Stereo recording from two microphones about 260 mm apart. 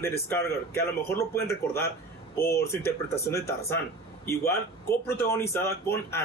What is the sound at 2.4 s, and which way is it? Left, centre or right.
Speech, left.